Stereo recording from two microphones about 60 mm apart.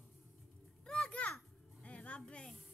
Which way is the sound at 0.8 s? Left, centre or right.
Centre.